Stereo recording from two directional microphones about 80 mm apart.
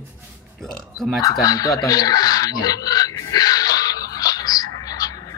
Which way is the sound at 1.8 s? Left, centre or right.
Left.